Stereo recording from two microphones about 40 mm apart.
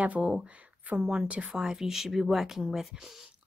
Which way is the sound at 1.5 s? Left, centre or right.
Centre.